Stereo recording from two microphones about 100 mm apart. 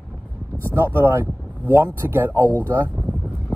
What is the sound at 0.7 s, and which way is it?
Speech, 25° right (ahead or behind).